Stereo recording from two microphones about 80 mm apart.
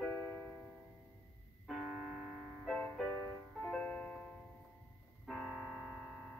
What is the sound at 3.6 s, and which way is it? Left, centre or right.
Music, centre.